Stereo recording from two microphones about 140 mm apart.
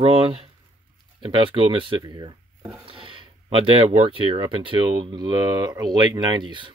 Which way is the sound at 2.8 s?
40° right (ahead or behind).